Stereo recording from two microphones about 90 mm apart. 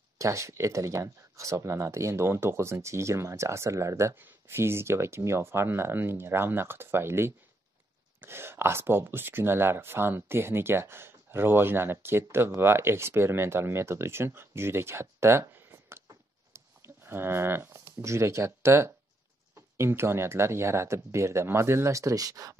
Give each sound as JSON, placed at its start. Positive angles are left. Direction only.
{"t": 0.2, "sound": "speech", "side_deg": -35}
{"t": 16.5, "sound": "livestock", "side_deg": -25}
{"t": 18.0, "sound": "speech", "side_deg": -30}